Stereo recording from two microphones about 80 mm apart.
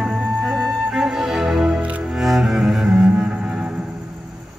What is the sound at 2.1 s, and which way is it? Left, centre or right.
Cello, centre.